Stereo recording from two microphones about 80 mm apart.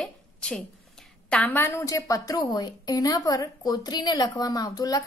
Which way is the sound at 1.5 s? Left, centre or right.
Left.